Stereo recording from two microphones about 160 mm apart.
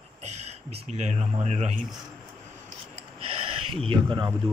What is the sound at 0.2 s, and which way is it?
Speech, 45° right (ahead or behind).